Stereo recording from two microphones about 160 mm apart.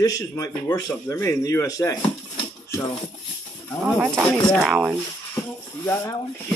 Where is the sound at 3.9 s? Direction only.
Centre (ahead or behind).